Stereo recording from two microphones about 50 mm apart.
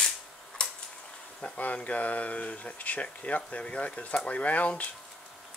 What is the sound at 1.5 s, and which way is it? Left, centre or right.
Speech, left.